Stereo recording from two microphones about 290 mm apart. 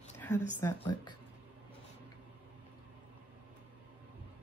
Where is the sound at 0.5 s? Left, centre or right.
Centre.